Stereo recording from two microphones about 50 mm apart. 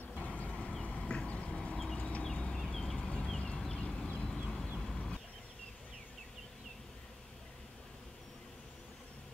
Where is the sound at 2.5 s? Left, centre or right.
Centre.